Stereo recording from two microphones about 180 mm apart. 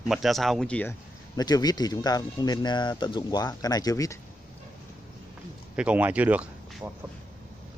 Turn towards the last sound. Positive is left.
turn(degrees=-10)  # may be behind; listen again after turning